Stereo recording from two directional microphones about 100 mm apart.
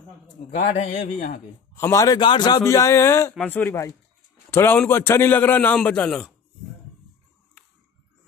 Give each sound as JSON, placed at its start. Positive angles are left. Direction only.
{"t": 0.7, "sound": "a man's voice", "side_deg": 85}
{"t": 1.8, "sound": "speech", "side_deg": 30}
{"t": 2.1, "sound": "speech", "side_deg": 50}
{"t": 2.6, "sound": "a man's voice", "side_deg": 30}